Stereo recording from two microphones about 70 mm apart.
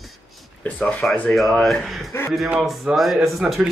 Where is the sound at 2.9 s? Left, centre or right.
Centre.